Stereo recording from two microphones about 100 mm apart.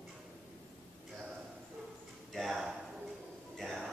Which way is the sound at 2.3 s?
Centre (ahead or behind).